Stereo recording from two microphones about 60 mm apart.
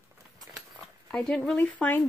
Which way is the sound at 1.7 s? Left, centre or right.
Left.